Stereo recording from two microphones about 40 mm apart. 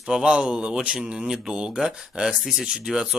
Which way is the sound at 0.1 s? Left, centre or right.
Right.